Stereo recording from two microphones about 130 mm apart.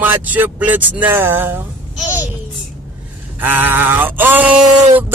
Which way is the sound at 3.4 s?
15° right (ahead or behind).